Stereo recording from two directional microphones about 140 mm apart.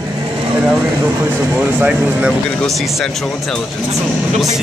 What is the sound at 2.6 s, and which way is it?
Speech, centre (ahead or behind).